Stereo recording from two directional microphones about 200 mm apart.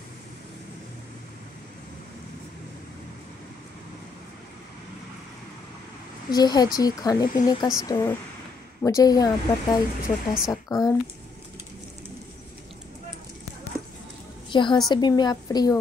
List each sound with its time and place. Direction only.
6.3 s speech: 20° left (ahead or behind)
10.3 s a woman's voice: centre (ahead or behind)
10.7 s speech: 20° left (ahead or behind)
14.5 s a woman's voice: 25° left (ahead or behind)